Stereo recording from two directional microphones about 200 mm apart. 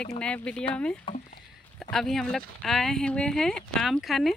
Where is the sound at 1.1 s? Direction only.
25° left (ahead or behind).